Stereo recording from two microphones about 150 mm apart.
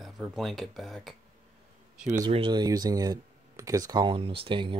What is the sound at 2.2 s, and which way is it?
Speech, 35° right (ahead or behind).